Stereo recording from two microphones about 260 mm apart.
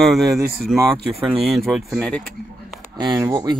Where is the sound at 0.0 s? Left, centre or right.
Centre.